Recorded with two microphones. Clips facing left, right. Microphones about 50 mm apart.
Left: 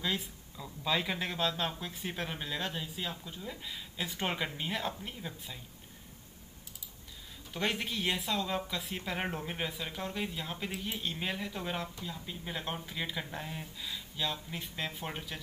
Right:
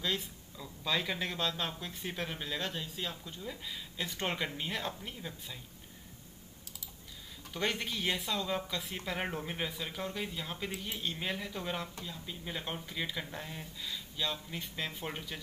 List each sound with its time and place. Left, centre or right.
0.0 s speech: centre
7.5 s speech: centre